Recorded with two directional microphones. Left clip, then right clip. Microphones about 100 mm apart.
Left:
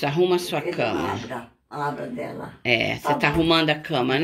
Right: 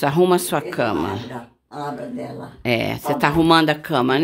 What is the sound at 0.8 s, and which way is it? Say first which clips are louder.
Speech: right 2 dB; 55° right (ahead or behind).